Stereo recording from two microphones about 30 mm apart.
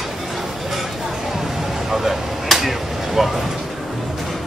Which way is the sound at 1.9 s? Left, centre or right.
Centre.